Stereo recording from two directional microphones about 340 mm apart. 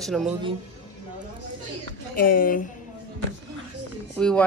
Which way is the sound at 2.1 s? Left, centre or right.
Left.